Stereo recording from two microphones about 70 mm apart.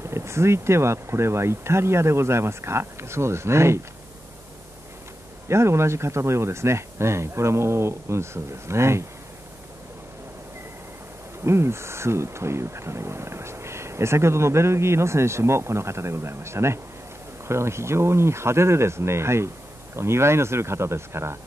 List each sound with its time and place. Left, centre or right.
0.0 s speech: right
5.5 s speech: right
11.4 s speech: right